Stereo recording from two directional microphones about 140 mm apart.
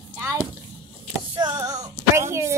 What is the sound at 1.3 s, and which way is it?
Speech, 25° right (ahead or behind).